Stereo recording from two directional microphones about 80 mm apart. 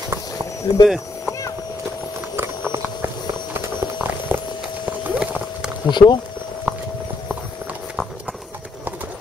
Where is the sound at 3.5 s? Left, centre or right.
Right.